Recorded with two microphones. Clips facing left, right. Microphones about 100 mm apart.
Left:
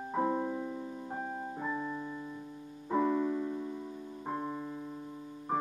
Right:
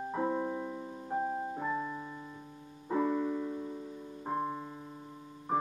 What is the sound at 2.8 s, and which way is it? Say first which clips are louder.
Music: left 1 dB; 5° right (ahead or behind).